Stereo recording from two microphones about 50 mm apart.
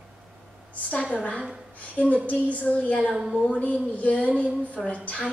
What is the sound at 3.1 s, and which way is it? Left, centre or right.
Speech, centre.